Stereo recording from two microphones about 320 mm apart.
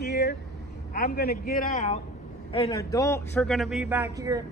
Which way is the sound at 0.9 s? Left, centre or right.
Left.